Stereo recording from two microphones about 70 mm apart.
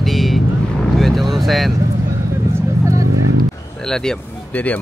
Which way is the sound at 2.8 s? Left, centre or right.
Right.